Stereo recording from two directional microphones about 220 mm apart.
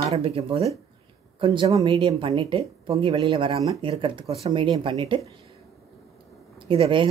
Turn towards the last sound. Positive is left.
turn(degrees=-25)  # may be behind; listen again after turning